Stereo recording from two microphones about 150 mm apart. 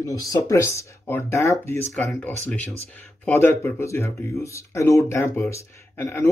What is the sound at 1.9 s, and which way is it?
Speech, 5° left (ahead or behind).